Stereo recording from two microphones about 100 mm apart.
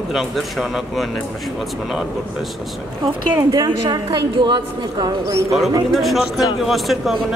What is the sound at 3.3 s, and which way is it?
A woman's voice, 40° right (ahead or behind).